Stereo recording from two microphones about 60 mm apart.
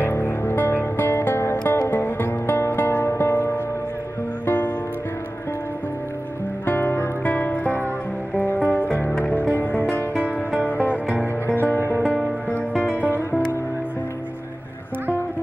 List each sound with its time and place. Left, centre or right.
0.0 s music: left
4.5 s music: left
6.6 s music: left
10.1 s music: right
10.6 s music: left